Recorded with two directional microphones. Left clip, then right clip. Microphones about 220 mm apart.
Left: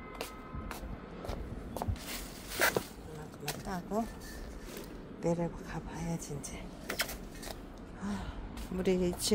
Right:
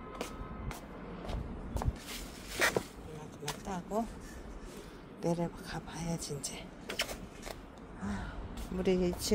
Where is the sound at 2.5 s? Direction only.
Centre (ahead or behind).